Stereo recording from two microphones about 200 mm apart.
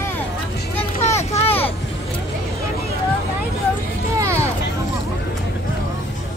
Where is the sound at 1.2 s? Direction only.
30° left (ahead or behind).